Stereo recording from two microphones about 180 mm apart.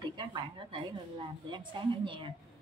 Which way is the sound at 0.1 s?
25° right (ahead or behind).